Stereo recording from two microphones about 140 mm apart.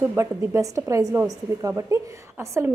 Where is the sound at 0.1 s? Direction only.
20° right (ahead or behind).